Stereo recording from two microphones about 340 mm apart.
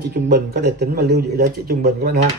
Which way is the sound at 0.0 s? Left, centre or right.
Right.